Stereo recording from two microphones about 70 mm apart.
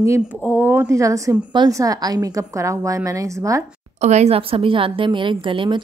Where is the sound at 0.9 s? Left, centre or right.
Right.